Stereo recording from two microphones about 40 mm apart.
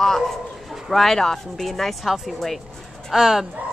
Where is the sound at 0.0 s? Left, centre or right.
Centre.